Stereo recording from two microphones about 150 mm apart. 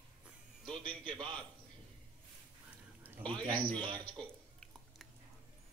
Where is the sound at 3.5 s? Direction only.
35° right (ahead or behind).